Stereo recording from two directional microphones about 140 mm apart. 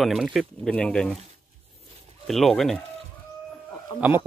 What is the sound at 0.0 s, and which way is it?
Speech, centre (ahead or behind).